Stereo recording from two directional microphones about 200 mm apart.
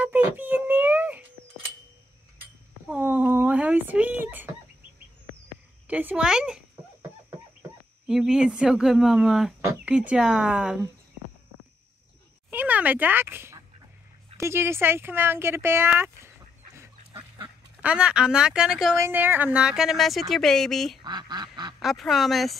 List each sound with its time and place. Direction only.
0.0 s a sound: 10° right (ahead or behind)
2.9 s a sound: 5° right (ahead or behind)
5.9 s speech: 5° right (ahead or behind)
7.0 s chicken: 15° right (ahead or behind)
8.1 s speech: 5° right (ahead or behind)
12.4 s a sound: 10° right (ahead or behind)
14.3 s speech: 15° right (ahead or behind)
21.0 s duck: 20° right (ahead or behind)
21.7 s speech: centre (ahead or behind)